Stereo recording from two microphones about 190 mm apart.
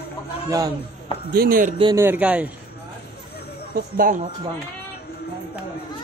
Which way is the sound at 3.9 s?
45° right (ahead or behind).